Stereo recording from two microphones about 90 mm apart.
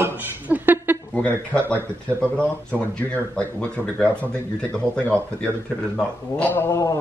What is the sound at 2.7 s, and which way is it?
Speech, 15° left (ahead or behind).